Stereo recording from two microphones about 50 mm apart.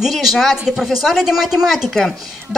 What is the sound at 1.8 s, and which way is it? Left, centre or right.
Speech, centre.